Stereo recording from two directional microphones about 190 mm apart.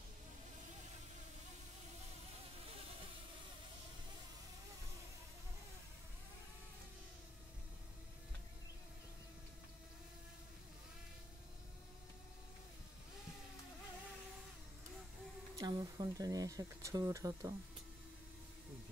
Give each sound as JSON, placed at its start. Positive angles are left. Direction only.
{"t": 15.5, "sound": "speech", "side_deg": -20}